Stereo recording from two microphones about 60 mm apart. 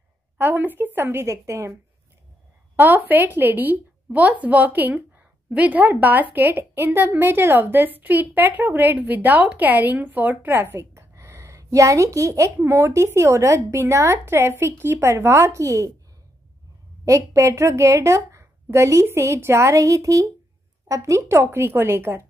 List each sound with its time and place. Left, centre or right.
0.4 s a woman's voice: right
2.7 s a woman's voice: right
17.0 s a woman's voice: right
20.9 s a woman's voice: right